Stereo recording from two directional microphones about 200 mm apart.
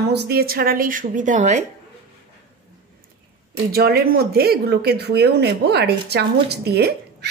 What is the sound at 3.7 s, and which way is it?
Speech, 50° right (ahead or behind).